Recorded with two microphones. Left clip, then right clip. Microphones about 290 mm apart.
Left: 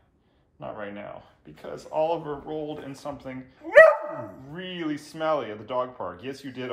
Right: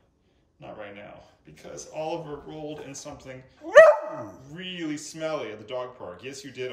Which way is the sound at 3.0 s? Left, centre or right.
Centre.